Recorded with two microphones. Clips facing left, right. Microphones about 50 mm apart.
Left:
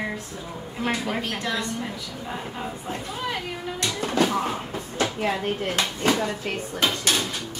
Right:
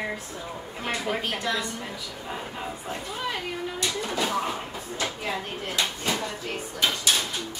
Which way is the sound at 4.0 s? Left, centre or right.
Left.